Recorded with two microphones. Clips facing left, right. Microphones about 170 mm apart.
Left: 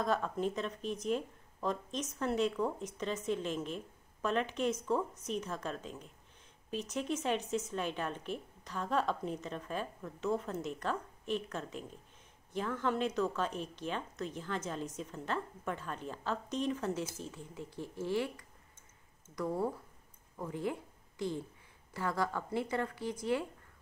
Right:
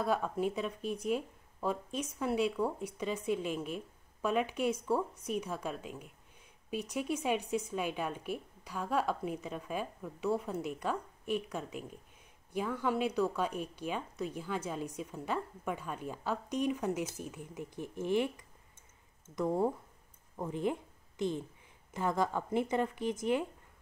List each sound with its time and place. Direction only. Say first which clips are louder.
0.0 s a woman's voice: right 1 dB; 10° right (ahead or behind)